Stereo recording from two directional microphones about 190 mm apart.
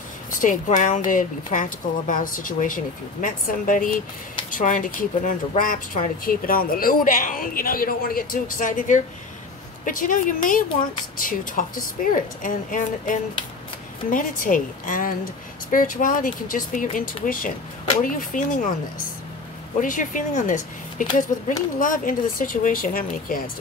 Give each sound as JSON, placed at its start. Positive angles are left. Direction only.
{"t": 0.4, "sound": "speech", "side_deg": 40}
{"t": 19.8, "sound": "speech", "side_deg": 45}